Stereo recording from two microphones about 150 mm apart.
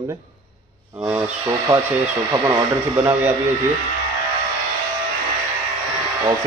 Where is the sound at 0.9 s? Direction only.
20° right (ahead or behind).